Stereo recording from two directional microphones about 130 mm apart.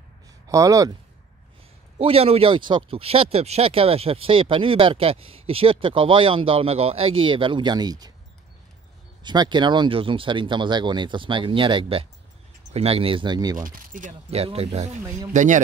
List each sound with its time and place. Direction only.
0.5 s speech: 25° right (ahead or behind)
2.0 s speech: 45° right (ahead or behind); by 8.1 s 30° right (ahead or behind)
9.2 s speech: 35° right (ahead or behind)
13.6 s speech: 90° right
14.3 s speech: 50° right (ahead or behind)
15.3 s a man's voice: 75° right (ahead or behind)